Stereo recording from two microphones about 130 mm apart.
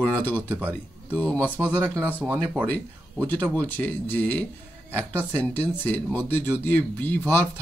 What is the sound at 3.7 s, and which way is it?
Speech, 15° left (ahead or behind).